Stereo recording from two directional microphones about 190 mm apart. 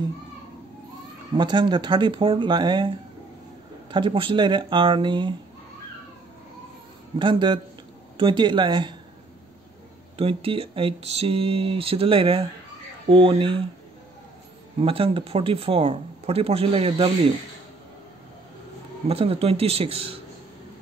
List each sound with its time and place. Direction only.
1.3 s speech: 25° right (ahead or behind)
3.9 s speech: 25° right (ahead or behind)
7.2 s speech: 25° right (ahead or behind)
10.1 s speech: 30° right (ahead or behind)
14.8 s speech: 30° right (ahead or behind)
19.0 s speech: 30° right (ahead or behind)